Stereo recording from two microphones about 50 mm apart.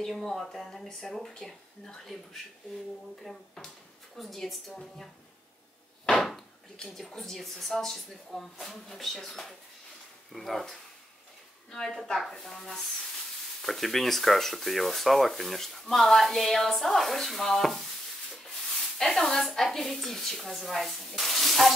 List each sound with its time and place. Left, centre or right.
0.0 s speech: centre
18.9 s speech: centre